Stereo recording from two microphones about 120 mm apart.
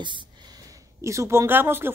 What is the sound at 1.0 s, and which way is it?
Speech, 25° right (ahead or behind).